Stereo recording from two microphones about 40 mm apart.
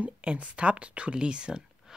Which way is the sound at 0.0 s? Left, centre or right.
Right.